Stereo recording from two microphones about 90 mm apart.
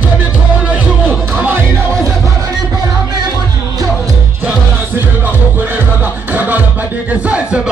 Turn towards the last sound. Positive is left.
turn(degrees=-15)  # may be behind; listen again after turning